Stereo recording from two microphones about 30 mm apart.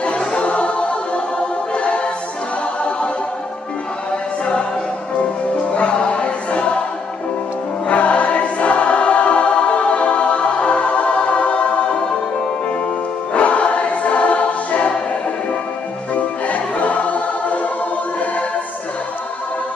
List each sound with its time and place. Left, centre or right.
0.3 s music: left
4.1 s music: left
5.7 s music: left
7.9 s choir: left
16.2 s music: left